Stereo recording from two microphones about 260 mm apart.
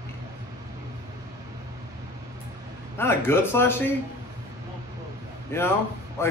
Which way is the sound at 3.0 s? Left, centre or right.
Centre.